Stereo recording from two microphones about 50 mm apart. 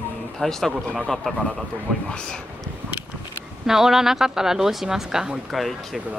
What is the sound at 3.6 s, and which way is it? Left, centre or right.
A woman's voice, centre.